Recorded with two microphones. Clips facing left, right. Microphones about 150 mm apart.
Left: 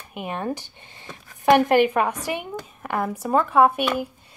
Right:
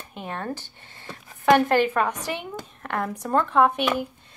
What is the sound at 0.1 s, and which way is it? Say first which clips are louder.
A woman's voice: left 4 dB; 15° left (ahead or behind).